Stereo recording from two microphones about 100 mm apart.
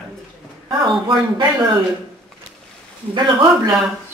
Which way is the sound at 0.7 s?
55° right (ahead or behind).